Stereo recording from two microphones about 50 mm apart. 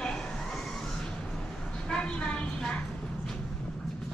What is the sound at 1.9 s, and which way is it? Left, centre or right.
Vehicle, centre.